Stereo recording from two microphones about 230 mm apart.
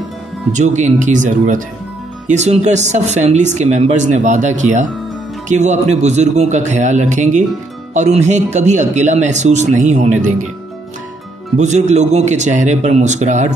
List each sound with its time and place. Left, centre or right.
0.6 s speech: right
11.5 s speech: right